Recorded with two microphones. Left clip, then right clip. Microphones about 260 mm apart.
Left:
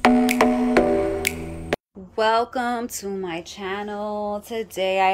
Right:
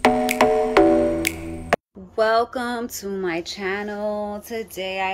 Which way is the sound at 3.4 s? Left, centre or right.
Right.